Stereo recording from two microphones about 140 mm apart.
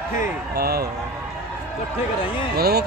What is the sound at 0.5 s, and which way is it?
Speech, 90° right.